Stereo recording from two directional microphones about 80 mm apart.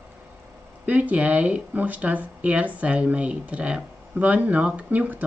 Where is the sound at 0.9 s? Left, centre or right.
Centre.